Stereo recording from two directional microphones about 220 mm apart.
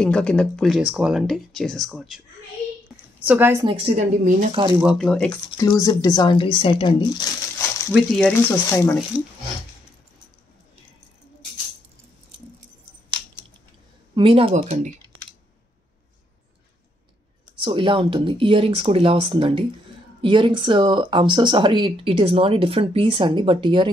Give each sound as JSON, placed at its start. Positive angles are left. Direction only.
{"t": 0.0, "sound": "speech", "side_deg": 5}
{"t": 3.3, "sound": "a woman's voice", "side_deg": -10}
{"t": 3.6, "sound": "speech", "side_deg": -25}
{"t": 4.7, "sound": "speech", "side_deg": 0}
{"t": 5.5, "sound": "speech", "side_deg": 20}
{"t": 7.9, "sound": "speech", "side_deg": 5}
{"t": 14.1, "sound": "speech", "side_deg": -25}
{"t": 17.6, "sound": "speech", "side_deg": -25}